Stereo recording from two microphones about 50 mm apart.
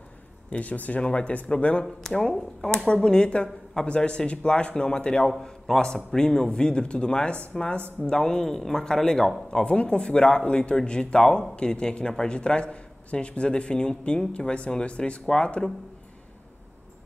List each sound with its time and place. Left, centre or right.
0.5 s speech: left
2.0 s speech: centre
5.7 s speech: centre